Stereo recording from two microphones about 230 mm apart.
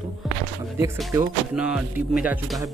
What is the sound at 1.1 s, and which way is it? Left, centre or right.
Music, centre.